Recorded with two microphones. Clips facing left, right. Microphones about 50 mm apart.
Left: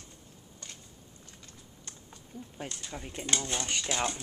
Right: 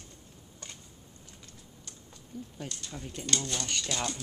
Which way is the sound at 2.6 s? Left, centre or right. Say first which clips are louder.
Left 3 dB; left.